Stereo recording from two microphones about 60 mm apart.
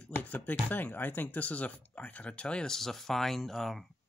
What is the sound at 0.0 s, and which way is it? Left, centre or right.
Speech, left.